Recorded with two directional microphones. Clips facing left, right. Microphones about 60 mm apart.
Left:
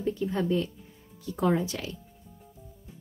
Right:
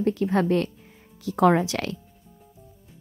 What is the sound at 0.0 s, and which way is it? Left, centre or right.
A woman's voice, right.